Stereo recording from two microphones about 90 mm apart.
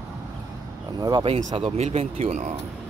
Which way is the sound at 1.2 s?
85° right.